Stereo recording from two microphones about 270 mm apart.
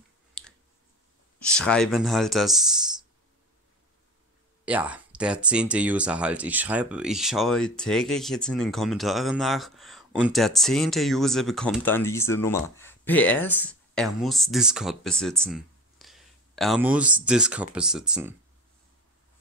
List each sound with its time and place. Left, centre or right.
0.4 s finger snapping: centre
1.4 s speech: centre
4.6 s speech: centre